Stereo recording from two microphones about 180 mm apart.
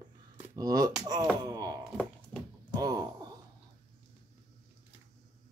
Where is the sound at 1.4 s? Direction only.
20° right (ahead or behind).